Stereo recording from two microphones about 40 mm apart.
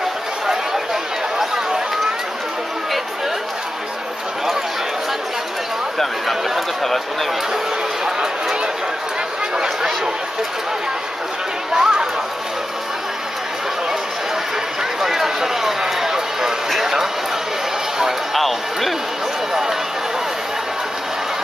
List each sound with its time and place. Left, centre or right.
5.9 s speech: centre
8.0 s speech: centre
11.7 s speech: centre
15.0 s a sound: centre
16.7 s speech: centre
18.3 s speech: centre